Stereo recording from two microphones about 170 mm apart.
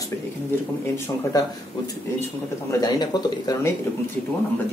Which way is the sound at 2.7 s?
25° left (ahead or behind).